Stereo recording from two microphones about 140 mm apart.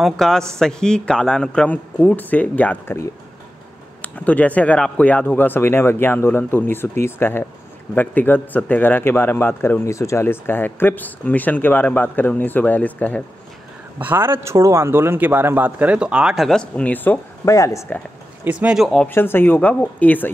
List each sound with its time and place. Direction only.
0.0 s a man's voice: 5° left (ahead or behind)
4.0 s speech: 10° left (ahead or behind)
13.9 s a man's voice: 15° right (ahead or behind); by 18.0 s 15° left (ahead or behind)
18.4 s a man's voice: 10° right (ahead or behind)
19.0 s speech: 15° left (ahead or behind)